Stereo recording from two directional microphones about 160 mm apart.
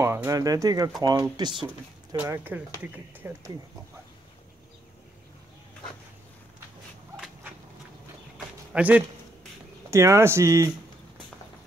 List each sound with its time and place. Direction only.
0.0 s speech: 15° right (ahead or behind)
2.1 s speech: 15° right (ahead or behind)
8.7 s speech: 10° right (ahead or behind)